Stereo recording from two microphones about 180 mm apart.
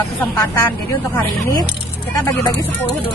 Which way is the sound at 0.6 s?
10° left (ahead or behind).